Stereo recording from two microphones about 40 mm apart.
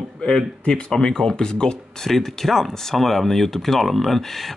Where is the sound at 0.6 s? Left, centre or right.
Left.